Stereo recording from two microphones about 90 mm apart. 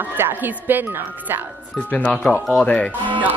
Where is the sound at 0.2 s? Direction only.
20° right (ahead or behind).